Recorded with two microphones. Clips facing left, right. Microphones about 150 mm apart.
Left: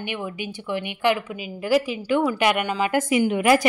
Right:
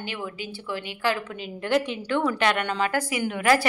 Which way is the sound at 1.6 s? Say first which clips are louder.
Left 3 dB; 5° left (ahead or behind).